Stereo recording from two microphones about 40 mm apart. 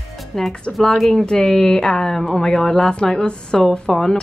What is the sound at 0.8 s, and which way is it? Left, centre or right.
Speech, centre.